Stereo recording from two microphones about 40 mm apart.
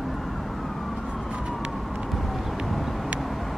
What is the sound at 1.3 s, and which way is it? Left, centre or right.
Vehicle, right.